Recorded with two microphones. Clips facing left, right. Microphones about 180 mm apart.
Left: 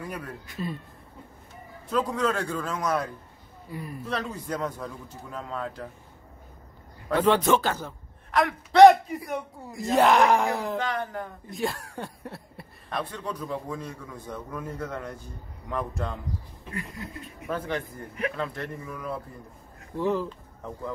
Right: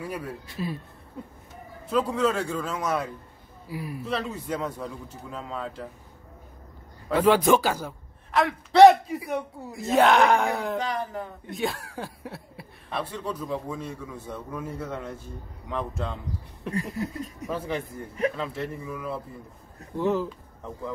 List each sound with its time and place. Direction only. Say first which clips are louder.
0.0 s a man's voice: right 3 dB; 5° right (ahead or behind)
2.1 s a man's voice: right 2 dB; 5° right (ahead or behind)
7.1 s a man's voice: right 2 dB; 5° right (ahead or behind)
16.7 s speech: right 7 dB; 40° right (ahead or behind)
17.5 s a man's voice: left 1 dB; 5° right (ahead or behind)